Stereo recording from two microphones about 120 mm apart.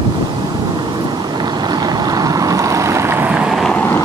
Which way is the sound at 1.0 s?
35° right (ahead or behind).